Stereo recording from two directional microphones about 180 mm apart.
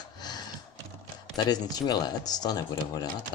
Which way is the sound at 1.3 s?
25° left (ahead or behind).